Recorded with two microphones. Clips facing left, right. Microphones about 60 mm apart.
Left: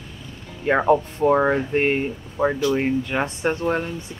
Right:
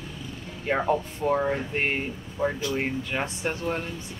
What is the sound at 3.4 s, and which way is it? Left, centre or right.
Speech, left.